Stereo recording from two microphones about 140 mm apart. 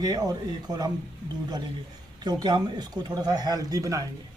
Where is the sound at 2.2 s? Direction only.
30° right (ahead or behind).